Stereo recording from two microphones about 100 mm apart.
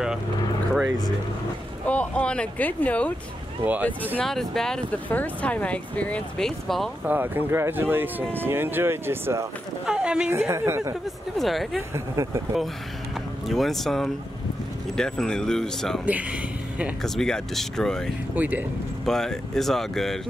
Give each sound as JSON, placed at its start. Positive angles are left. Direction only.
{"t": 1.9, "sound": "speech", "side_deg": 10}
{"t": 3.6, "sound": "speech", "side_deg": -15}
{"t": 4.2, "sound": "speech", "side_deg": 5}
{"t": 5.1, "sound": "speech", "side_deg": 15}
{"t": 7.1, "sound": "speech", "side_deg": -20}
{"t": 9.8, "sound": "a woman's voice", "side_deg": -10}
{"t": 10.5, "sound": "speech", "side_deg": -30}
{"t": 11.3, "sound": "speech", "side_deg": 0}
{"t": 13.5, "sound": "speech", "side_deg": 0}
{"t": 16.1, "sound": "speech", "side_deg": -15}
{"t": 17.0, "sound": "speech", "side_deg": 5}
{"t": 18.3, "sound": "speech", "side_deg": -15}
{"t": 19.0, "sound": "speech", "side_deg": 5}